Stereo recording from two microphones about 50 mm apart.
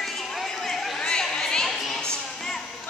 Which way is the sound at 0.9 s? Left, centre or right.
Centre.